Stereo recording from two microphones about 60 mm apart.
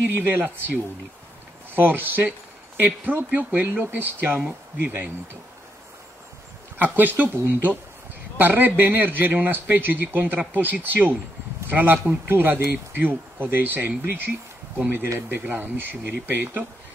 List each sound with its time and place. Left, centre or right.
0.2 s speech: right
1.8 s speech: right
6.8 s speech: right